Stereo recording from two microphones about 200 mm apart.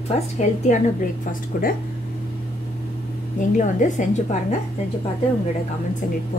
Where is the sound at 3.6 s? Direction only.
40° left (ahead or behind).